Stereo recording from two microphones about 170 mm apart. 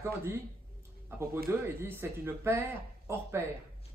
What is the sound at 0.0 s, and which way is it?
Speech, 15° right (ahead or behind).